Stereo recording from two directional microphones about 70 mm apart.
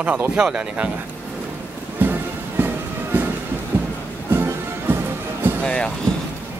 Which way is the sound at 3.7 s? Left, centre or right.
Right.